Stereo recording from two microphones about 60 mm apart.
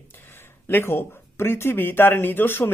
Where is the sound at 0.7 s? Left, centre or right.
Left.